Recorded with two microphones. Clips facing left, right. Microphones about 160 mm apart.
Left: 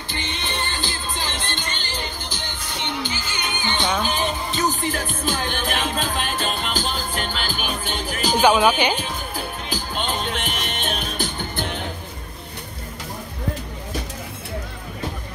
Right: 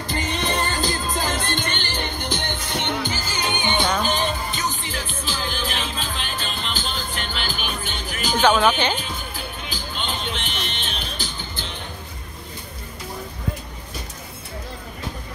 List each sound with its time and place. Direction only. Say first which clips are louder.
0.1 s music: right 5 dB; 40° right (ahead or behind)
3.6 s music: right 1 dB; 10° right (ahead or behind)
3.9 s music: even; 5° left (ahead or behind)
4.5 s music: left 5 dB; 35° left (ahead or behind)
8.4 s speech: left 1 dB; 10° left (ahead or behind)
8.9 s music: left 3 dB; 40° left (ahead or behind); by 11.8 s 60° left (ahead or behind)